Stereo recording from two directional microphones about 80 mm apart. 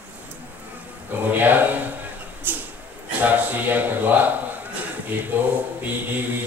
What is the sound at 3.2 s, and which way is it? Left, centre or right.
Speech, right.